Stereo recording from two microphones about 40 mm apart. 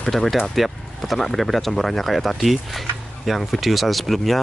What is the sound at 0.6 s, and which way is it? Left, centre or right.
Speech, centre.